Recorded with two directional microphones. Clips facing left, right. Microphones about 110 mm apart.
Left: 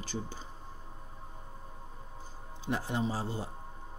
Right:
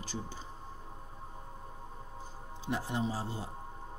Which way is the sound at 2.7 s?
75° left (ahead or behind).